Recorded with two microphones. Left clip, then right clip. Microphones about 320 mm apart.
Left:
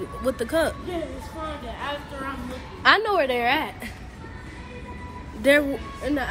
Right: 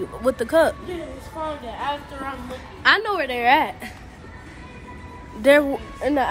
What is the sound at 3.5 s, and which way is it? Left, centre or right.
Speech, centre.